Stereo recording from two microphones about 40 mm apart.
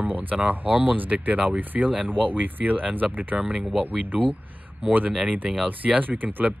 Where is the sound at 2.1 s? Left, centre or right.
Right.